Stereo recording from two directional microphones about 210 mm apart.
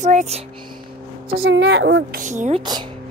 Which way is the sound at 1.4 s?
65° right (ahead or behind).